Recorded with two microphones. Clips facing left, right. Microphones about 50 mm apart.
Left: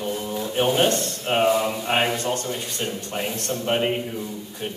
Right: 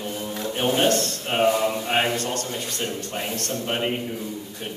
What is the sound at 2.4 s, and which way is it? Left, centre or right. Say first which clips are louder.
A man's voice: left 1 dB; centre.